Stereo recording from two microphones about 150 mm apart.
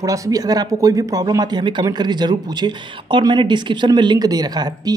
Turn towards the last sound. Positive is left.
turn(degrees=-25)  # may be behind; listen again after turning